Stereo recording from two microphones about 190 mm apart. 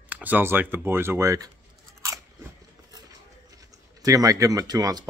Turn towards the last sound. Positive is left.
turn(degrees=-20)  # may be behind; listen again after turning